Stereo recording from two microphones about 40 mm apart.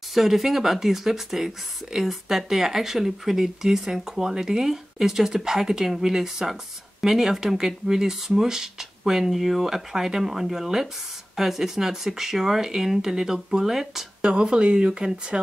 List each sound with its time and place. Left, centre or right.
0.1 s speech: centre
14.4 s speech: right